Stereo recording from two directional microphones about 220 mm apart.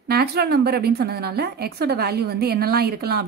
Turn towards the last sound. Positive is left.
turn(degrees=-45)  # may be behind; listen again after turning